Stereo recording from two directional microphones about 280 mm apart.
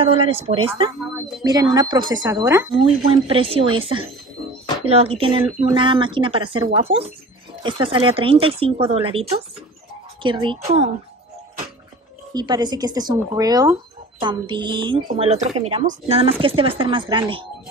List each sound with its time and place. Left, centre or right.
0.0 s speech: centre
12.4 s speech: centre